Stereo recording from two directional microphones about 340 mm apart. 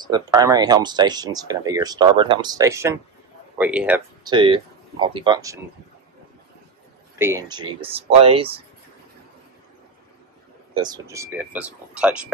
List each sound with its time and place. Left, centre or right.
0.0 s speech: centre
7.2 s speech: centre
10.7 s speech: centre